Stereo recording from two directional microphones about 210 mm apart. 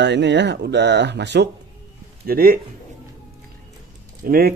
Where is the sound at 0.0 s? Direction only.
55° right (ahead or behind).